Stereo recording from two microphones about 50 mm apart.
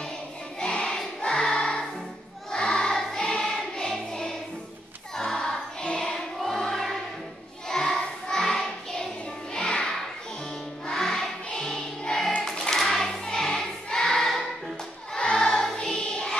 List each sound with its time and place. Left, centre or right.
0.6 s choir: centre
5.1 s music: centre
12.4 s choir: centre